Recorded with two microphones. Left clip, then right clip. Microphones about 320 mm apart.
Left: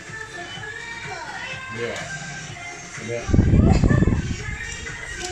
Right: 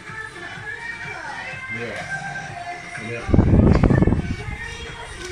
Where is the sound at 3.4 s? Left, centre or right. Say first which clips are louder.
Right 4 dB; right.